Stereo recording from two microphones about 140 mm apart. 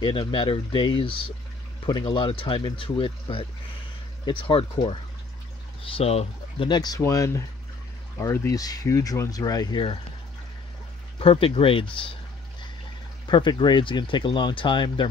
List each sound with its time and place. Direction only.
0.0 s speech: 35° left (ahead or behind)
6.7 s speech: 30° left (ahead or behind)
11.1 s speech: 40° left (ahead or behind)
13.3 s speech: 35° left (ahead or behind)